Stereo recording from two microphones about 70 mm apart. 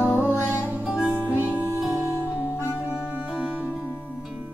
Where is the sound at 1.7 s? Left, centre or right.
Right.